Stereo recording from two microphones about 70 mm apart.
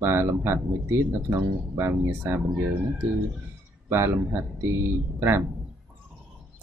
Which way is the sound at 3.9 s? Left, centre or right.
Right.